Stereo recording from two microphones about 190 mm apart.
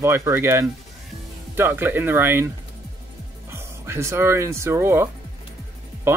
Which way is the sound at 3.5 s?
15° right (ahead or behind).